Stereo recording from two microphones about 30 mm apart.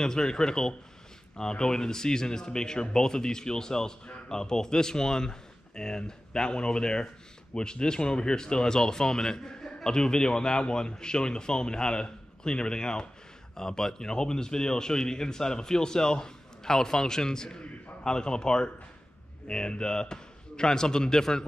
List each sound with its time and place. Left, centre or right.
0.0 s a man's voice: left